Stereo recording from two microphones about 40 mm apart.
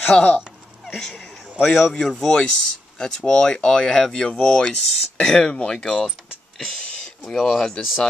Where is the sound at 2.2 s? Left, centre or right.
Centre.